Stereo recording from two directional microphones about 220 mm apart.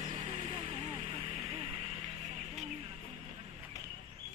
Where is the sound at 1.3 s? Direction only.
25° right (ahead or behind).